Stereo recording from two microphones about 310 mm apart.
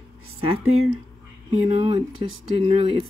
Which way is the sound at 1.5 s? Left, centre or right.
Centre.